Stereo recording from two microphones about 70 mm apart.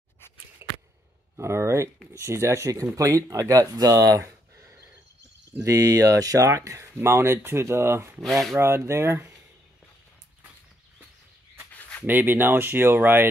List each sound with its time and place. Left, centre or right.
0.6 s a sound: right
1.3 s speech: right
8.2 s speech: centre
8.5 s speech: right
11.7 s a sound: left
12.1 s speech: right